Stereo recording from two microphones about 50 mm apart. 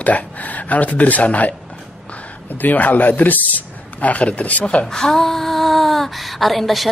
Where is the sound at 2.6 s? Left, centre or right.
Left.